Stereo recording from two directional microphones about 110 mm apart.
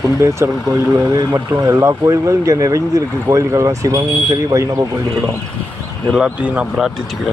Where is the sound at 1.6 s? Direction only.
30° right (ahead or behind).